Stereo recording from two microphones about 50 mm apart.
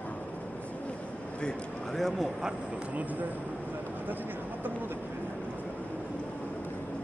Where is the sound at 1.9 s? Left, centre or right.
Centre.